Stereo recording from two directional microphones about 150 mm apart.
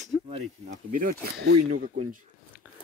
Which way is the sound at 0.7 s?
70° right (ahead or behind).